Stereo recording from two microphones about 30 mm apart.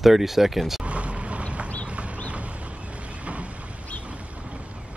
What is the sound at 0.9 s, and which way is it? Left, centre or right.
Boat, right.